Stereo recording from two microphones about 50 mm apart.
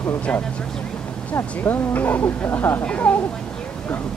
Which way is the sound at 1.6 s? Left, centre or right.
Left.